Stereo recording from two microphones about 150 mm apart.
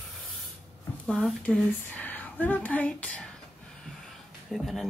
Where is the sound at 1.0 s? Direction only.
5° left (ahead or behind).